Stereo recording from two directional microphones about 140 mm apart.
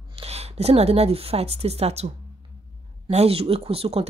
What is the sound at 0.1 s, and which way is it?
Speech, 50° right (ahead or behind).